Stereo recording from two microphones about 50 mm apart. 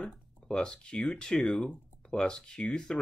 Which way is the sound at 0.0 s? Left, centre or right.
Centre.